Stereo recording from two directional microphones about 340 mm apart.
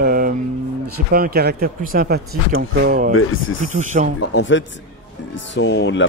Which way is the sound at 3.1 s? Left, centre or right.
Left.